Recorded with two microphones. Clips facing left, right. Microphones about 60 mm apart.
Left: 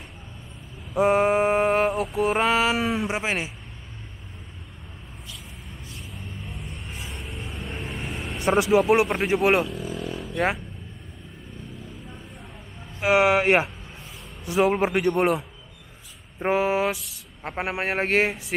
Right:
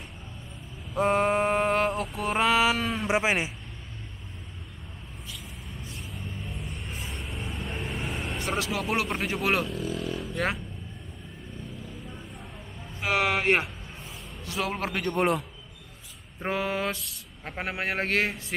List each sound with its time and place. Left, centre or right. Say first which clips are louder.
0.9 s speech: left 4 dB; centre
3.1 s speech: right 2 dB; centre
5.9 s music: even; centre
8.4 s speech: left 12 dB; centre
9.7 s a sound: even; centre
13.0 s a man's voice: left 6 dB; centre
15.1 s speech: left 3 dB; centre
16.3 s speech: left 7 dB; centre